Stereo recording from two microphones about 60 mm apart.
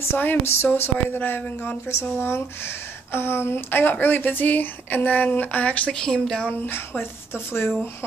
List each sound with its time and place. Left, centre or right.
0.0 s speech: left
1.4 s speech: left
1.9 s speech: left
5.9 s a woman's voice: centre
6.6 s speech: left